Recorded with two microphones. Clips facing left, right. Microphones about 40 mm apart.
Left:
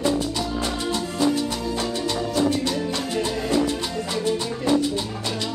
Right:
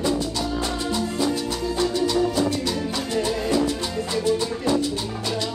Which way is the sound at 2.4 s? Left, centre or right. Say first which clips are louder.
Left 1 dB; centre.